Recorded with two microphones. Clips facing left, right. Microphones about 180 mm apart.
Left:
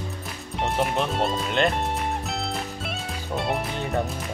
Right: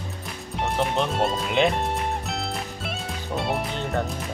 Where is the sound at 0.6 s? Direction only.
Centre (ahead or behind).